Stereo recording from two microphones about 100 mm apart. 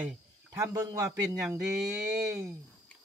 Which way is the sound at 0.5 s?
35° right (ahead or behind).